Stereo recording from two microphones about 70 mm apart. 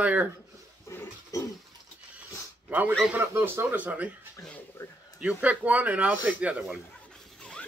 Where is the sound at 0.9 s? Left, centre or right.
Left.